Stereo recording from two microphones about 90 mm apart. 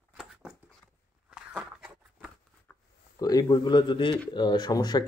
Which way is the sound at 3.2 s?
45° left (ahead or behind).